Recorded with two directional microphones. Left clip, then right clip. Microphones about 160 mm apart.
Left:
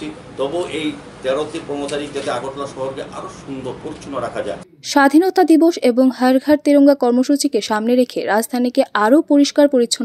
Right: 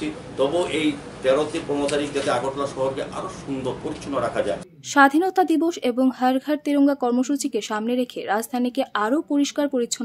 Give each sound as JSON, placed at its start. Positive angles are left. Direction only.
{"t": 0.0, "sound": "a man's voice", "side_deg": 0}
{"t": 4.9, "sound": "a woman's voice", "side_deg": 30}